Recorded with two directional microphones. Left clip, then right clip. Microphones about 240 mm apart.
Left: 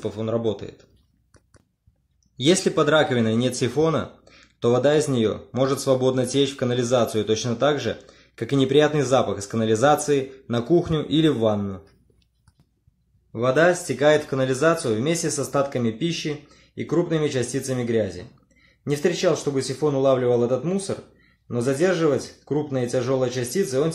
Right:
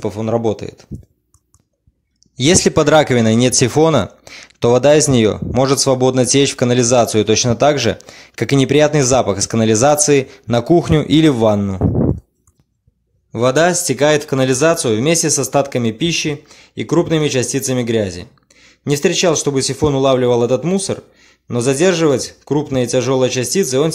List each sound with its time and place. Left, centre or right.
0.0 s speech: right
2.3 s speech: right
13.3 s speech: right